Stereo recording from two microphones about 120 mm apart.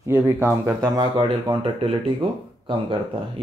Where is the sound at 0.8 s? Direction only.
45° right (ahead or behind).